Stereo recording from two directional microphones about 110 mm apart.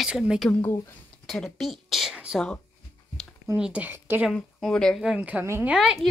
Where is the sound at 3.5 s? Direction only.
15° right (ahead or behind).